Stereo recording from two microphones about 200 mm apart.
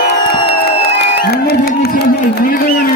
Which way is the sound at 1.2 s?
50° left (ahead or behind).